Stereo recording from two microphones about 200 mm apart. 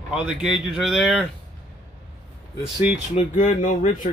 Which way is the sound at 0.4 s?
Centre (ahead or behind).